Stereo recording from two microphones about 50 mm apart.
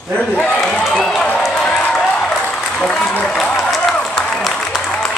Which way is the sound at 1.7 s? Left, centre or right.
Left.